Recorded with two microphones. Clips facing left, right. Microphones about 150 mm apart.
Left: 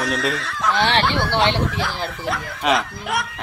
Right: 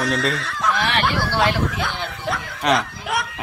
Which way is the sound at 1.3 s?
25° left (ahead or behind).